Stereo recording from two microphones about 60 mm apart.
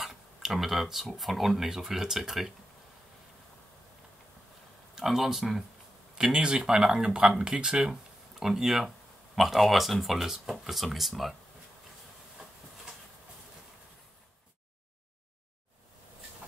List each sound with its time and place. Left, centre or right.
0.0 s speech: centre
4.9 s speech: centre